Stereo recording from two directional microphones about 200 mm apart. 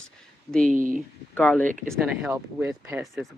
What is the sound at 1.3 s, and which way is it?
Speech, 10° left (ahead or behind).